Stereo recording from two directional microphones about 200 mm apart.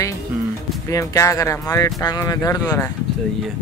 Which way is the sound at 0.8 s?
15° left (ahead or behind).